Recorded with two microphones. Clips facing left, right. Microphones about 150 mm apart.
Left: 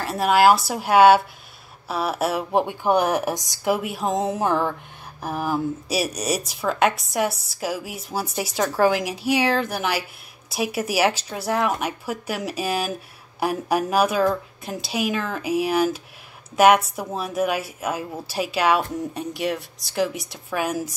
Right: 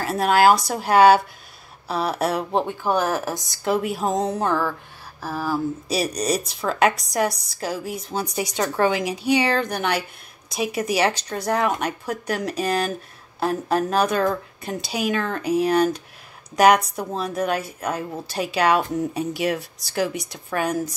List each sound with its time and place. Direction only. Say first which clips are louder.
0.0 s speech: even; centre (ahead or behind)
2.6 s a woman's voice: left 2 dB; 15° left (ahead or behind)
4.4 s a woman's voice: left 1 dB; 20° left (ahead or behind)
5.9 s speech: right 3 dB; 5° left (ahead or behind)